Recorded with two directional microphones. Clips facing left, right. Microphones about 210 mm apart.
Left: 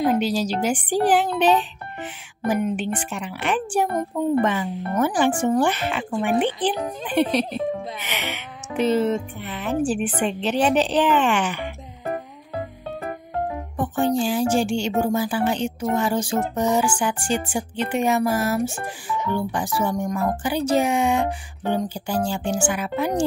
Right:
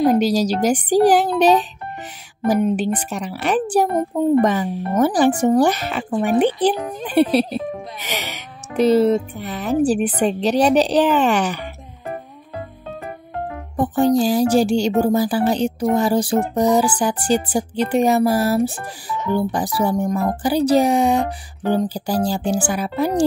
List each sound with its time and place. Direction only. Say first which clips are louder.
0.1 s music: right 5 dB; 40° right (ahead or behind)
13.7 s music: right 6 dB; 35° right (ahead or behind)